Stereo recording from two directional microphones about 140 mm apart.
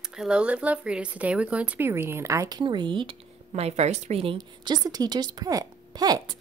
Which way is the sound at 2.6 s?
35° right (ahead or behind).